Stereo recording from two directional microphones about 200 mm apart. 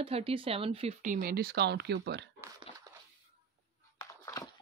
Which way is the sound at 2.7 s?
30° left (ahead or behind).